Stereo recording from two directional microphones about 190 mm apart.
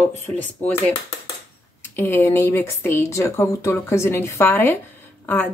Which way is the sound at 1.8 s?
10° left (ahead or behind).